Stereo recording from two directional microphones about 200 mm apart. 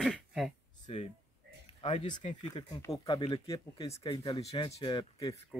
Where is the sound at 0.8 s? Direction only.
30° left (ahead or behind).